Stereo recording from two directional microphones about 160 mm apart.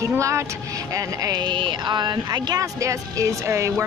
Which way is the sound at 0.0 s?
20° right (ahead or behind).